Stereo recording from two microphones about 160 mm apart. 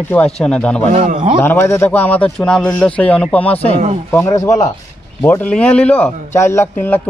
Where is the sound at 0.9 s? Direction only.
55° right (ahead or behind).